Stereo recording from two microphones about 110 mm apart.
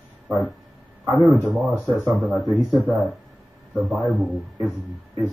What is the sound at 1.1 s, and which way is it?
A man's voice, centre (ahead or behind).